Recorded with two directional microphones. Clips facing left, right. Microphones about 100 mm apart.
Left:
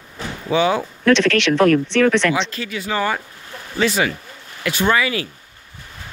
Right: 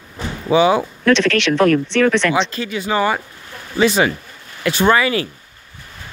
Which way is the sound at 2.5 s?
25° right (ahead or behind).